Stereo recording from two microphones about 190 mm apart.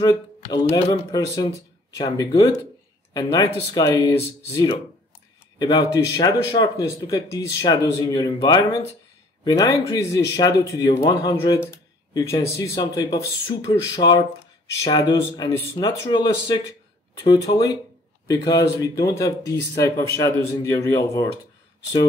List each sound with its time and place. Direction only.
0.0 s speech: 20° left (ahead or behind)
5.6 s speech: 20° left (ahead or behind)